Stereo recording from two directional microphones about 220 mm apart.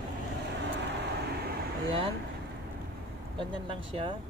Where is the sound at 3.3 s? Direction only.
25° right (ahead or behind).